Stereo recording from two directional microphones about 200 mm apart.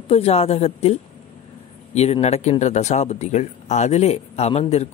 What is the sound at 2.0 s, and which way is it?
Speech, 35° left (ahead or behind).